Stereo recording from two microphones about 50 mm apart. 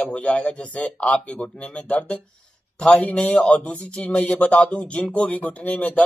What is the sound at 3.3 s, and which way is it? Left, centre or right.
Speech, left.